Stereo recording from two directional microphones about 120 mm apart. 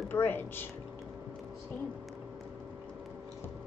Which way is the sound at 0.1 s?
20° left (ahead or behind).